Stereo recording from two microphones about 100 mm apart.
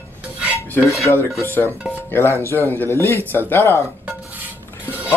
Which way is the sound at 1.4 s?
20° left (ahead or behind).